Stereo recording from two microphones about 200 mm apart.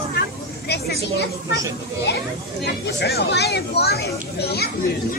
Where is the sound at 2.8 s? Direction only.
55° left (ahead or behind).